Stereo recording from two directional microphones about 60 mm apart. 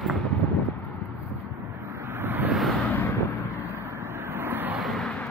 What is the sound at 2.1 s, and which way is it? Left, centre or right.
Vehicle, right.